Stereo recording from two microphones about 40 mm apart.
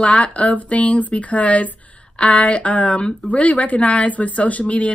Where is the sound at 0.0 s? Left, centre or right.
Left.